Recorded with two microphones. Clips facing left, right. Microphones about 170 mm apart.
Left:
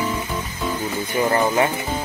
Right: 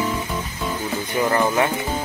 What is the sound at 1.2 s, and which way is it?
Speech, 15° left (ahead or behind).